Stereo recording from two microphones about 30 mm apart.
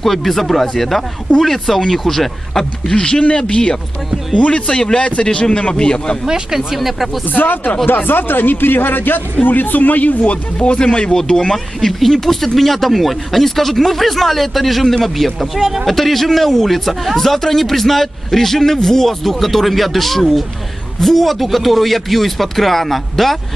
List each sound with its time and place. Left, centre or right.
0.0 s a man's voice: centre
2.9 s a man's voice: left
6.2 s speech: centre
7.2 s speech: left
11.5 s a man's voice: centre
15.9 s a man's voice: centre